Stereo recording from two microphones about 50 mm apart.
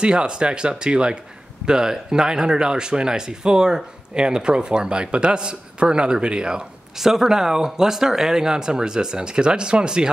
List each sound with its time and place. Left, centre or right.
0.0 s speech: centre
7.0 s speech: centre